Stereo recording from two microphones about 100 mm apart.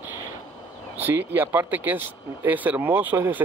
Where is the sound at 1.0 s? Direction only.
20° right (ahead or behind).